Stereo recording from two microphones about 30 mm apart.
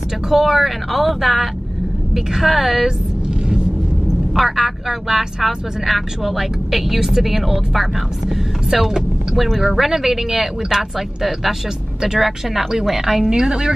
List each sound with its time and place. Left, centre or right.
0.3 s speech: centre
4.5 s speech: centre
5.4 s speech: centre
13.3 s a woman's voice: right